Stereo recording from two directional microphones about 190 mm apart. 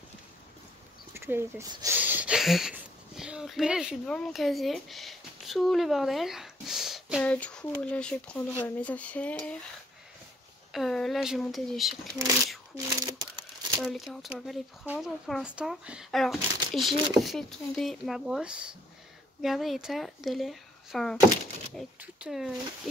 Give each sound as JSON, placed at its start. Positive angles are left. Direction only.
{"t": 1.1, "sound": "speech", "side_deg": -10}
{"t": 8.6, "sound": "cutlery", "side_deg": 10}
{"t": 10.7, "sound": "speech", "side_deg": 0}
{"t": 12.7, "sound": "speech", "side_deg": -20}
{"t": 13.7, "sound": "speech", "side_deg": 0}